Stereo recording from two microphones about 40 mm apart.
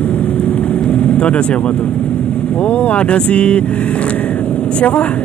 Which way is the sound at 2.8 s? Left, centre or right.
Left.